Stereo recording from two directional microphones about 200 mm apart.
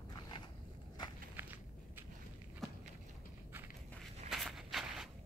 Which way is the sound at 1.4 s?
10° right (ahead or behind).